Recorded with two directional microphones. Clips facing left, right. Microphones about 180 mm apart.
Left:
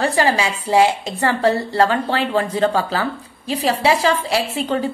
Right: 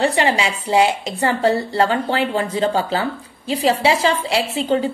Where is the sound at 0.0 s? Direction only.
20° right (ahead or behind).